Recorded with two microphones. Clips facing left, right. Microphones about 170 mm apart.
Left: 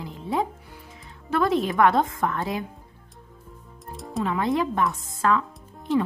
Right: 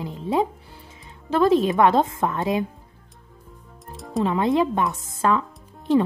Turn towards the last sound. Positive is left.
turn(degrees=-20)  # may be behind; listen again after turning